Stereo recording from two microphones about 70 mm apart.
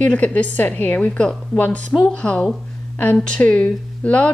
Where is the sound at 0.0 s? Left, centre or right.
Left.